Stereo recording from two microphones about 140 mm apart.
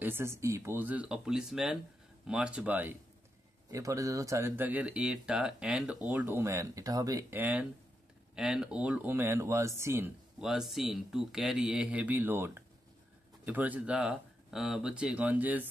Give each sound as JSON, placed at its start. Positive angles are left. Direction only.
{"t": 0.0, "sound": "speech", "side_deg": -15}
{"t": 10.4, "sound": "speech", "side_deg": 0}